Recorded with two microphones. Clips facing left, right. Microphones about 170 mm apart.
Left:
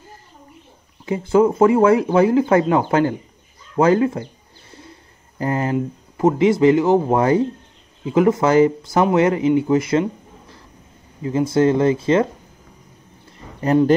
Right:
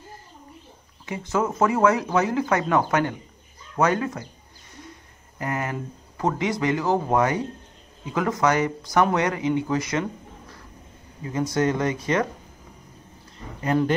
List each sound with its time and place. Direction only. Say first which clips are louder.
1.0 s speech: left 10 dB; 30° left (ahead or behind)
3.7 s bird: left 7 dB; 30° left (ahead or behind)
5.4 s speech: left 8 dB; 30° left (ahead or behind)
11.2 s speech: left 7 dB; 30° left (ahead or behind)
13.6 s speech: left 7 dB; 35° left (ahead or behind)